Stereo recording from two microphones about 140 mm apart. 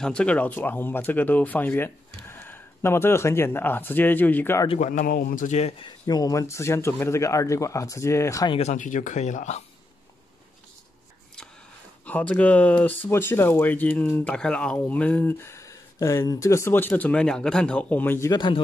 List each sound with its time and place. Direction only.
0.0 s speech: 5° left (ahead or behind)
4.7 s a man's voice: 65° left (ahead or behind)
6.0 s speech: 25° left (ahead or behind)
8.5 s speech: 45° left (ahead or behind)
8.7 s a man's voice: 65° left (ahead or behind)
12.0 s speech: 10° left (ahead or behind)
18.3 s speech: 35° left (ahead or behind)